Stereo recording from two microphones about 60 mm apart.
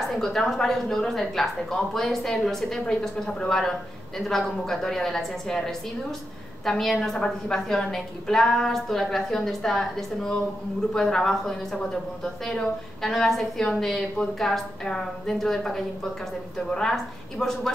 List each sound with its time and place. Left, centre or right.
0.1 s a woman's voice: centre
13.0 s a woman's voice: centre